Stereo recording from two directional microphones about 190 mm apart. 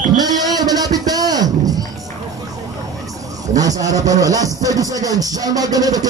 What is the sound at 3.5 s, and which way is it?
Speech, 20° right (ahead or behind).